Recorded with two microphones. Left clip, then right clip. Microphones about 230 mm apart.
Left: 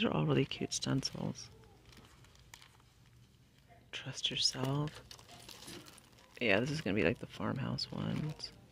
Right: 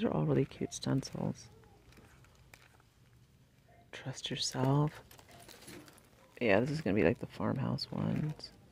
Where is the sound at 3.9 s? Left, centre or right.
Centre.